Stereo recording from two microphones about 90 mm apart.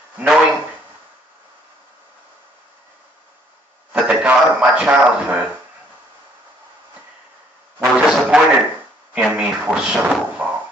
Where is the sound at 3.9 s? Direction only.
10° right (ahead or behind).